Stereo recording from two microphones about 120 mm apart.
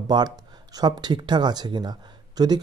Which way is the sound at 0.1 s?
35° right (ahead or behind).